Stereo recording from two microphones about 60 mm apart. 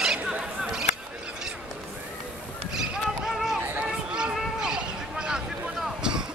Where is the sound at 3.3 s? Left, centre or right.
Centre.